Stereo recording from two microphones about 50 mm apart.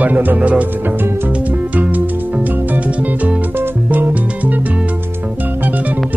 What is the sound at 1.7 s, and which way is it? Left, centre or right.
Music, right.